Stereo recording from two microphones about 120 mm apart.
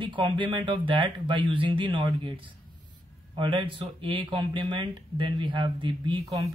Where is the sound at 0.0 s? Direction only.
40° right (ahead or behind).